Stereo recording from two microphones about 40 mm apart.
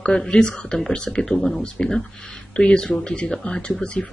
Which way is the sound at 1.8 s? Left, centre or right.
Left.